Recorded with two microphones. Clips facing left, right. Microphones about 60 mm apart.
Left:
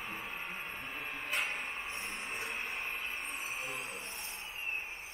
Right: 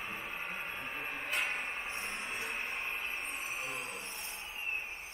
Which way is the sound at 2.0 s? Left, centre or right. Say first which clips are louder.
Right 1 dB; centre.